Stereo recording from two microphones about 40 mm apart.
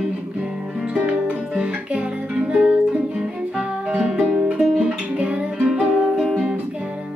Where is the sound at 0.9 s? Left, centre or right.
Right.